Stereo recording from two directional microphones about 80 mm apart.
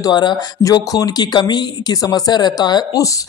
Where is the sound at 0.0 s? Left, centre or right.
Left.